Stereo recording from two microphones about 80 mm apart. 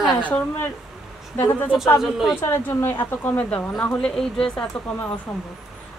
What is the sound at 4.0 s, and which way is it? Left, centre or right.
A woman's voice, centre.